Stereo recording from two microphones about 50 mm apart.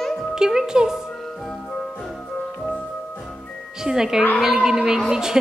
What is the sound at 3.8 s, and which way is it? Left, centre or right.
Speech, centre.